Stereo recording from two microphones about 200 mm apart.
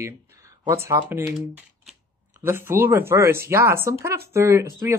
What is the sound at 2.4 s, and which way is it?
Speech, 10° right (ahead or behind).